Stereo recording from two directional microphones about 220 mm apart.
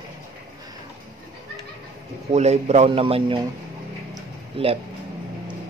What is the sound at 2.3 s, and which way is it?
Speech, 30° right (ahead or behind).